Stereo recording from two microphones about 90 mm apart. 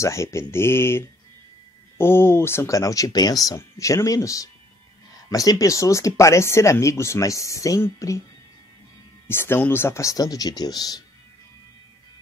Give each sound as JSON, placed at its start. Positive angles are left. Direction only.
{"t": 0.0, "sound": "speech", "side_deg": 35}
{"t": 9.3, "sound": "speech", "side_deg": 25}